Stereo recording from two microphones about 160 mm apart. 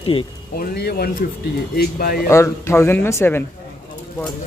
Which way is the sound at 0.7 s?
80° left.